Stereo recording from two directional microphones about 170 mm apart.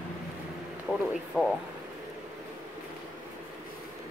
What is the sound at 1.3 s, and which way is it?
Speech, 5° right (ahead or behind).